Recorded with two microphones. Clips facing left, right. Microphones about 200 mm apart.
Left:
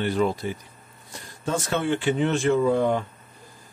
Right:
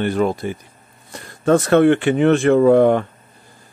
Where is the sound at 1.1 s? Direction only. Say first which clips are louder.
Right 12 dB; 65° right (ahead or behind).